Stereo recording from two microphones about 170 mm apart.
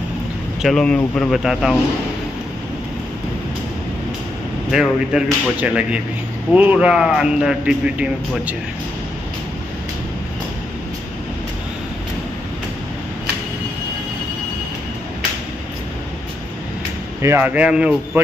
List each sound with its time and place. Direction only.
0.6 s a man's voice: centre (ahead or behind)
5.1 s a man's voice: 5° right (ahead or behind)
17.2 s a man's voice: 15° right (ahead or behind)